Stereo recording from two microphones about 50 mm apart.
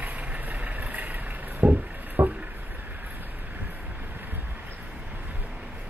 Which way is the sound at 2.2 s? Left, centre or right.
Right.